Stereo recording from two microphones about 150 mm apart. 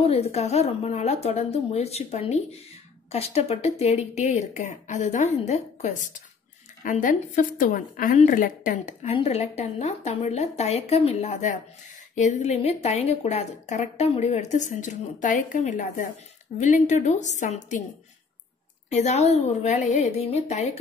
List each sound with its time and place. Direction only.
0.0 s a woman's voice: 40° left (ahead or behind); by 8.9 s 60° left (ahead or behind)
9.0 s a woman's voice: 45° left (ahead or behind)
18.9 s a woman's voice: 50° left (ahead or behind)